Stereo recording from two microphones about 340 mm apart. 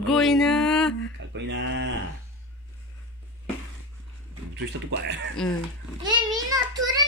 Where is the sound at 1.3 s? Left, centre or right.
Right.